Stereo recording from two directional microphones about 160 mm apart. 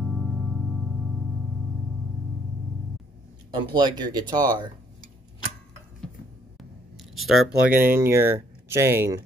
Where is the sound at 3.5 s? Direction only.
30° right (ahead or behind).